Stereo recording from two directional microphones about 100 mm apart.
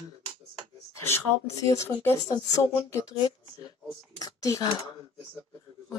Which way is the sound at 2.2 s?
35° left (ahead or behind).